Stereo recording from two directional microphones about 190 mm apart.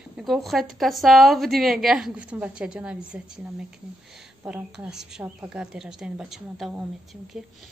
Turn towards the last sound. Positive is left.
turn(degrees=0)  # may be behind; listen again after turning